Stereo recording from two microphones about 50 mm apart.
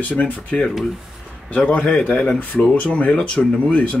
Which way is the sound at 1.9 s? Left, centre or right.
Left.